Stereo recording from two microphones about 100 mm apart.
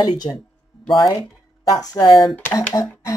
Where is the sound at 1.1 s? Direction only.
40° left (ahead or behind).